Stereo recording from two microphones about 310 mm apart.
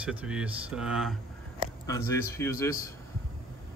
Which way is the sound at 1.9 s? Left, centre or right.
Centre.